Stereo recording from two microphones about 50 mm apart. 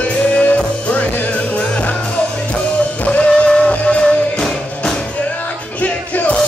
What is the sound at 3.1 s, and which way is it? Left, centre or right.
Music, left.